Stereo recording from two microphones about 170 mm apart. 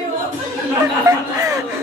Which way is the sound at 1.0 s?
20° right (ahead or behind).